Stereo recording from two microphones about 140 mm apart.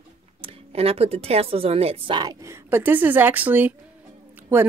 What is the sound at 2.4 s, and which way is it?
Speech, 15° right (ahead or behind).